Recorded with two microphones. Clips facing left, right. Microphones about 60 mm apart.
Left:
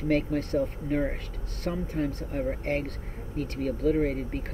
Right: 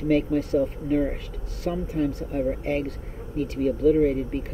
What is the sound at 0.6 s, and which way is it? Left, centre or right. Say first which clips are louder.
Speech: right 4 dB; centre.